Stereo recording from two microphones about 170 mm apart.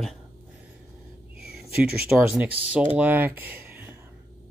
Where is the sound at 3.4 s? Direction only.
10° right (ahead or behind).